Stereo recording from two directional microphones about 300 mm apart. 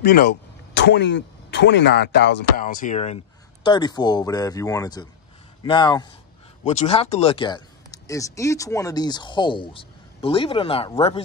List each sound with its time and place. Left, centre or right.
0.0 s speech: left